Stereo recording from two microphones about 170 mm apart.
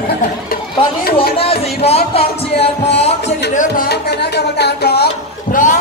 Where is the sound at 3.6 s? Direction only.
65° left (ahead or behind).